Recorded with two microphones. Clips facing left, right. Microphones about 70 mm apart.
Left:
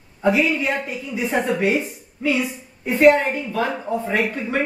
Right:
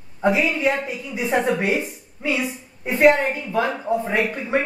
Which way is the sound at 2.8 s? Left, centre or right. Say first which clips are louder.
Left 2 dB; right.